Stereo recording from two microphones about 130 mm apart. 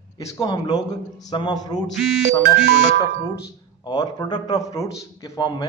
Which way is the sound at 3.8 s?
35° left (ahead or behind).